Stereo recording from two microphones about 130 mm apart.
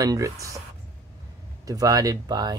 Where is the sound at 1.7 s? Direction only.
25° right (ahead or behind).